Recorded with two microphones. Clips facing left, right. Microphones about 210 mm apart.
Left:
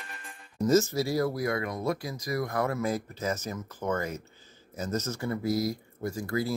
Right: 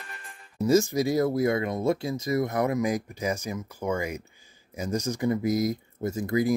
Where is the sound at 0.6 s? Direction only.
10° right (ahead or behind).